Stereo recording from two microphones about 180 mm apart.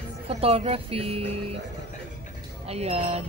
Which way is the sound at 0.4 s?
35° right (ahead or behind).